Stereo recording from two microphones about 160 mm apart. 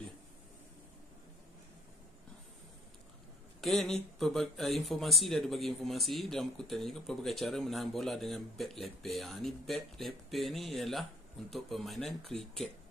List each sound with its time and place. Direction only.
3.6 s speech: centre (ahead or behind)